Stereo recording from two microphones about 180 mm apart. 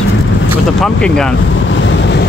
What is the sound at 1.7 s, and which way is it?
Vehicle, 85° left.